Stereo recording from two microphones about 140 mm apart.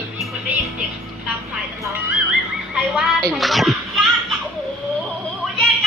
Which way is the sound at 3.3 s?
Centre (ahead or behind).